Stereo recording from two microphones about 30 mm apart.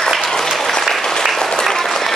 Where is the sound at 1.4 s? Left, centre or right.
Centre.